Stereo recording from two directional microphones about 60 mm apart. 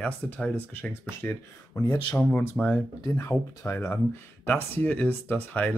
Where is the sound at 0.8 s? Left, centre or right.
Left.